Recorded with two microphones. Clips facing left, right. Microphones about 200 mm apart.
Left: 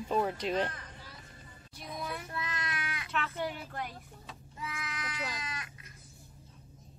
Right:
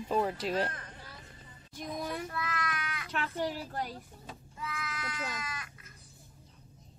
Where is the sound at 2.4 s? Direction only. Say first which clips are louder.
Right 2 dB; 25° left (ahead or behind).